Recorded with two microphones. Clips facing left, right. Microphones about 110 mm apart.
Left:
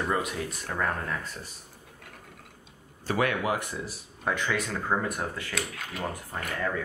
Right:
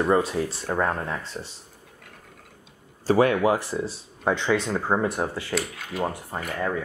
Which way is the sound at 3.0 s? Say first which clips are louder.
Right 8 dB; 30° right (ahead or behind).